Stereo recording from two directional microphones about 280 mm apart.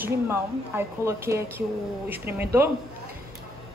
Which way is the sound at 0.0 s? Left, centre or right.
Centre.